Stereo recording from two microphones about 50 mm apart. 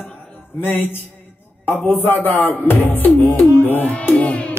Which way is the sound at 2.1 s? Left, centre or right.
Left.